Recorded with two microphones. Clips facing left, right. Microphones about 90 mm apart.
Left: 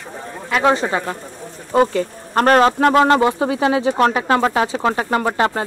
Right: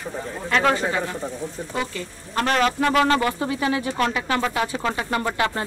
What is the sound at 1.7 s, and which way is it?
Speech, 45° left (ahead or behind).